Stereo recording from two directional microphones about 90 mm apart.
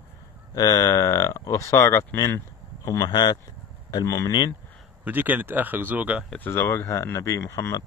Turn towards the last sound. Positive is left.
turn(degrees=30)  # may be behind; listen again after turning